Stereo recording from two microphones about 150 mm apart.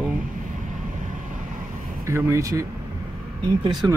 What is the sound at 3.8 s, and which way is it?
Speech, 25° right (ahead or behind).